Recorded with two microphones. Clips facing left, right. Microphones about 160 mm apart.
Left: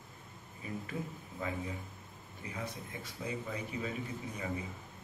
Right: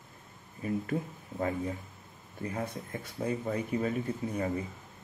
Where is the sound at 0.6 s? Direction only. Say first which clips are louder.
Right 8 dB; 45° right (ahead or behind).